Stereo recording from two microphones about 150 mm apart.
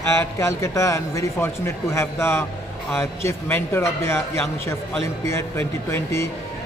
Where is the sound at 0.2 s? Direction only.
20° left (ahead or behind).